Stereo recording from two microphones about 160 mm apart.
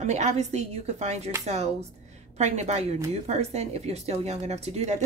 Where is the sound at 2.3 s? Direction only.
45° right (ahead or behind).